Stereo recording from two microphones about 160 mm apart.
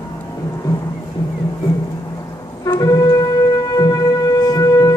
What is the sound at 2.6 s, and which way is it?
Wind instrument, 20° left (ahead or behind).